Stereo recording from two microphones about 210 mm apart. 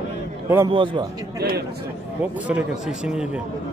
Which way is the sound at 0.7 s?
25° right (ahead or behind).